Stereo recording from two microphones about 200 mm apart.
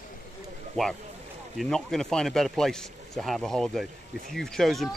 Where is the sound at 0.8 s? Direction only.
5° left (ahead or behind).